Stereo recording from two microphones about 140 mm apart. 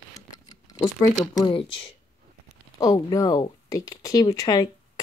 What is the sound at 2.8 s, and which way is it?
Speech, 25° left (ahead or behind).